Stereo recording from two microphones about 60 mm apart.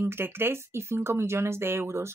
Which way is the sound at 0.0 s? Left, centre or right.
Right.